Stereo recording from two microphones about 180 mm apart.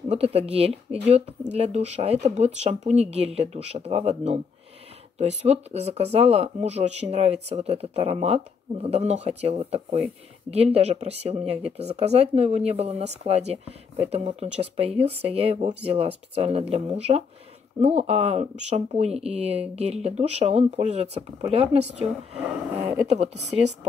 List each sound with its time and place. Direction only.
0.1 s speech: 35° right (ahead or behind)
23.0 s speech: 35° right (ahead or behind)